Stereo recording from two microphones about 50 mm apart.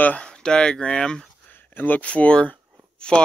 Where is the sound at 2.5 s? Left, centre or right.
Centre.